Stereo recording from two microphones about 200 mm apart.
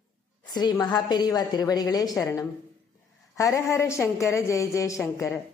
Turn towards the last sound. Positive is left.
turn(degrees=15)  # may be behind; listen again after turning